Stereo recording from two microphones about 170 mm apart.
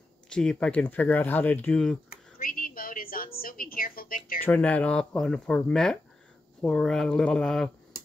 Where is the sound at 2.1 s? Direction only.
55° left (ahead or behind).